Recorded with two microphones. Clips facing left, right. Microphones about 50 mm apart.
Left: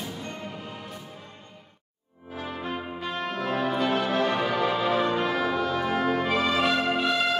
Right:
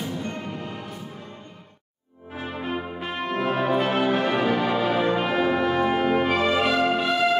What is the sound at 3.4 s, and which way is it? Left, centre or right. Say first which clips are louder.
Brass instrument: right 4 dB; right.